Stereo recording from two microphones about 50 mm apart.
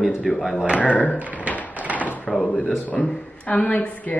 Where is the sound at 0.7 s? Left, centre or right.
Left.